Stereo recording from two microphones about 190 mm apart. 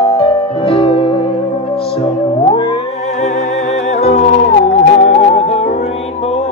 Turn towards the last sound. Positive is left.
turn(degrees=35)  # may be behind; listen again after turning